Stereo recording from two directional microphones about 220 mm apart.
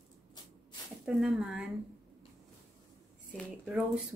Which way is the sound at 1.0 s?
Centre (ahead or behind).